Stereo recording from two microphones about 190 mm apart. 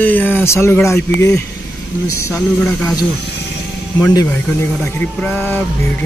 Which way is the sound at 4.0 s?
10° left (ahead or behind).